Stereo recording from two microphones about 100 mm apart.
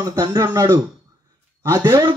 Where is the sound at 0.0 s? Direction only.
45° right (ahead or behind).